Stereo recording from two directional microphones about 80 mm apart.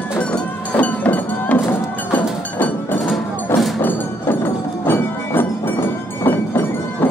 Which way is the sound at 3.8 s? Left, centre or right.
Left.